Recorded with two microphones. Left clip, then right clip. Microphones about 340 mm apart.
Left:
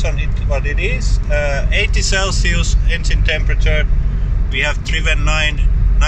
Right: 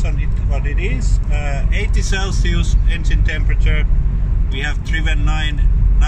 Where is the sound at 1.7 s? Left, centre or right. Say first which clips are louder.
Left 6 dB; centre.